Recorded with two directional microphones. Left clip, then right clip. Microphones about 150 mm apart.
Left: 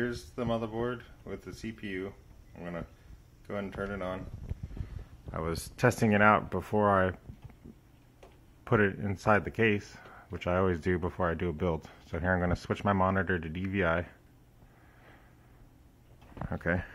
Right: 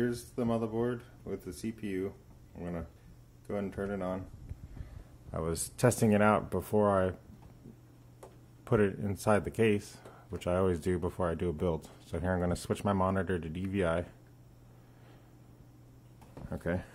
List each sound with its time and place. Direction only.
0.0 s speech: 15° right (ahead or behind)
5.3 s speech: 10° right (ahead or behind)
8.6 s speech: 10° right (ahead or behind)
16.6 s speech: 10° right (ahead or behind)